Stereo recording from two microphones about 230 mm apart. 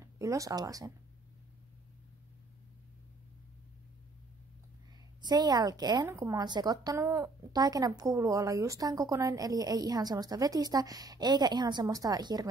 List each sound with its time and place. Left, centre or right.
0.0 s speech: centre
5.2 s a woman's voice: centre